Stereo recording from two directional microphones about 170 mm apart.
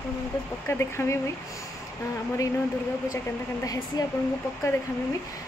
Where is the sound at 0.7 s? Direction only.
15° left (ahead or behind).